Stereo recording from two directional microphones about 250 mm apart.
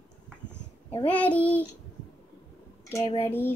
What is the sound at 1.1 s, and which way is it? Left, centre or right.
Speech, centre.